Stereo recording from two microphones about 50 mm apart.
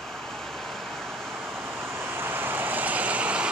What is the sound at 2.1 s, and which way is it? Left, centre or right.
Vehicle, right.